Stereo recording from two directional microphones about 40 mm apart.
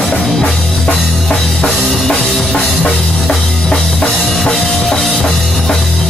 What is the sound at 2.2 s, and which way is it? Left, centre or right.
Music, centre.